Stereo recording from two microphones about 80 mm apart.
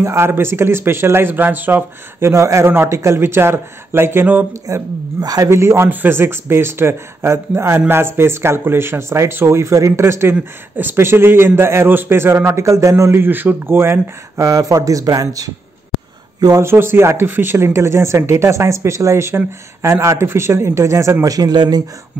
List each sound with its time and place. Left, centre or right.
0.0 s speech: right
4.7 s speech: right
5.2 s a man's voice: right
5.5 s speech: right
16.6 s speech: right